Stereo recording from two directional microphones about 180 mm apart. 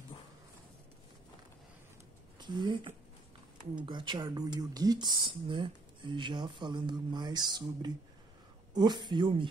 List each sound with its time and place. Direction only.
2.3 s speech: 25° right (ahead or behind)